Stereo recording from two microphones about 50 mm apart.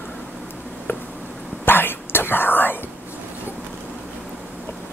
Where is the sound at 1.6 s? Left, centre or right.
Left.